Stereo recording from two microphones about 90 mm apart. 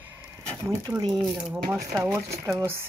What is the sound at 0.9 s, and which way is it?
Speech, 40° right (ahead or behind).